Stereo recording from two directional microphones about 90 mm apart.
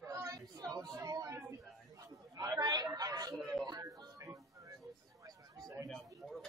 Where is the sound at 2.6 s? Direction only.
50° right (ahead or behind).